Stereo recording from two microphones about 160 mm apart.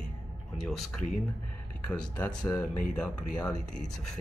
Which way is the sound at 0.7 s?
Centre (ahead or behind).